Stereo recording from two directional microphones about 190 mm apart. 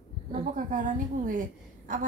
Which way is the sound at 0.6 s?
45° right (ahead or behind).